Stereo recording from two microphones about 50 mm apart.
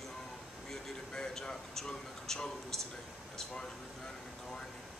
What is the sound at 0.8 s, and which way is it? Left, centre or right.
Speech, centre.